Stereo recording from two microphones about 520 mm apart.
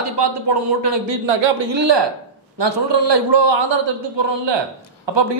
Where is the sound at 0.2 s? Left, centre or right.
Right.